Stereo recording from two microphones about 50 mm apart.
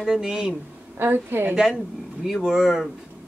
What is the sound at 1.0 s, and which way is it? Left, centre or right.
Speech, right.